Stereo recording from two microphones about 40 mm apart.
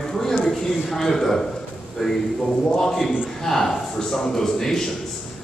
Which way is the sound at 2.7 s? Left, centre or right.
Centre.